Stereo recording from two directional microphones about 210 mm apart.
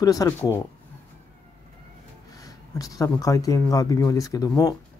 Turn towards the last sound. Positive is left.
turn(degrees=15)  # may be behind; listen again after turning